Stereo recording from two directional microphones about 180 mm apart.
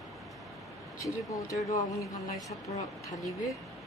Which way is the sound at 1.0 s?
20° left (ahead or behind).